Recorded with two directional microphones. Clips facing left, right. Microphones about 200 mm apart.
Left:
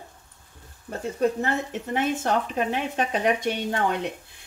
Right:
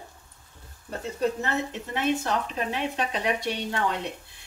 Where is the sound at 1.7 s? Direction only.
50° left (ahead or behind).